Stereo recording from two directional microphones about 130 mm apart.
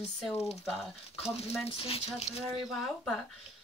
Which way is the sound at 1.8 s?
50° left (ahead or behind).